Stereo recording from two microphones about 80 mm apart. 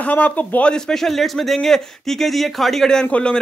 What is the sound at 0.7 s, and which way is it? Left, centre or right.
A man's voice, centre.